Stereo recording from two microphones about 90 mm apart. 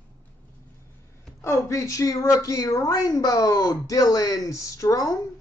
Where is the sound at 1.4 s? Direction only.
35° left (ahead or behind).